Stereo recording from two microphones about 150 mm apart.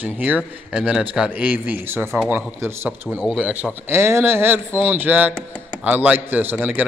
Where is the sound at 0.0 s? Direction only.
10° right (ahead or behind).